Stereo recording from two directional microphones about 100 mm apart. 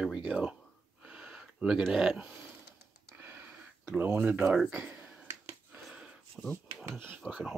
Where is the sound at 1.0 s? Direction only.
10° right (ahead or behind).